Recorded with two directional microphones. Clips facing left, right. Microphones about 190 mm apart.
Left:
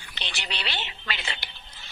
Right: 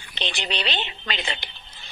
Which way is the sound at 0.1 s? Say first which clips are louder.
Right 7 dB; 20° right (ahead or behind).